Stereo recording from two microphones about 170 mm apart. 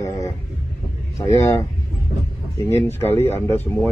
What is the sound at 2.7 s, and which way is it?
A man's voice, 15° left (ahead or behind).